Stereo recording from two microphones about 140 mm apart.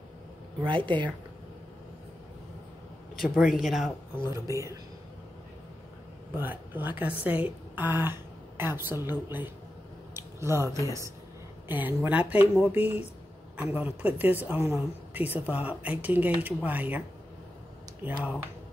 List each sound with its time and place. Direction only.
0.6 s speech: 35° right (ahead or behind)
3.2 s speech: centre (ahead or behind)
4.3 s speech: 20° right (ahead or behind)
6.3 s a woman's voice: 15° right (ahead or behind)
18.0 s a woman's voice: 10° right (ahead or behind)